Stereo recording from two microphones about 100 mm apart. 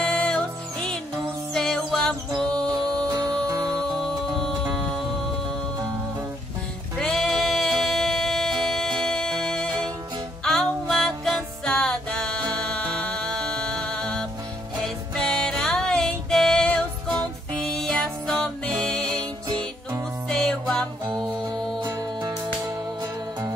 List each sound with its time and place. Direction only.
0.0 s music: 10° left (ahead or behind)
2.7 s music: 40° right (ahead or behind)
7.0 s music: 5° left (ahead or behind)
20.2 s music: 5° left (ahead or behind)
21.1 s music: 40° right (ahead or behind)